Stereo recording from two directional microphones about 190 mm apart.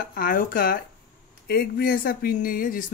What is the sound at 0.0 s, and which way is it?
Speech, 50° left (ahead or behind).